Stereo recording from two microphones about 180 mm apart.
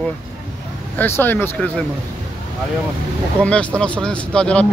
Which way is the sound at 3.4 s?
5° left (ahead or behind).